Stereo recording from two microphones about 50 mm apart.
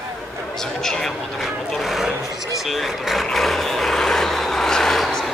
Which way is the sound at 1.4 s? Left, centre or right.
Centre.